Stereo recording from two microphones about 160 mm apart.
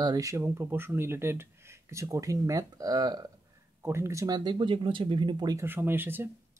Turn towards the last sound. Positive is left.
turn(degrees=-15)  # may be behind; listen again after turning